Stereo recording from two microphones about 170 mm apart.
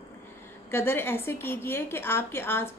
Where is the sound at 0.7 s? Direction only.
15° left (ahead or behind).